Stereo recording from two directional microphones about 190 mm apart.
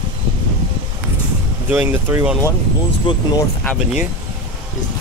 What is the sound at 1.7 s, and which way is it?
Speech, 10° right (ahead or behind).